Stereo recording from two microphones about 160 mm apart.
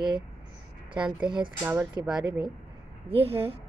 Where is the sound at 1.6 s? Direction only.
10° right (ahead or behind).